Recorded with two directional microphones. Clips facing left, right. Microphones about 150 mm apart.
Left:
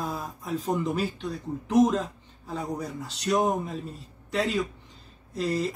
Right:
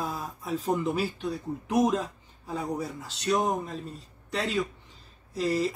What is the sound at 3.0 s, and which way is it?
Speech, centre (ahead or behind).